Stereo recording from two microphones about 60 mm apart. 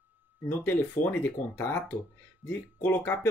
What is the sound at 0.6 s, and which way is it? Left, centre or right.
Speech, left.